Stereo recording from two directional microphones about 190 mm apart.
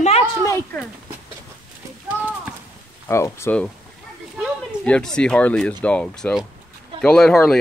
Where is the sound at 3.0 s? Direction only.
15° left (ahead or behind).